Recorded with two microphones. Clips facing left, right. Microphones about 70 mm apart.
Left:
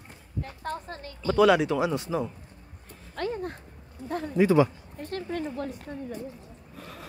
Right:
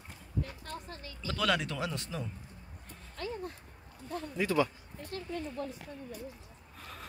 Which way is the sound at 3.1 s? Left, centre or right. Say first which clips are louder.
Left 8 dB; left.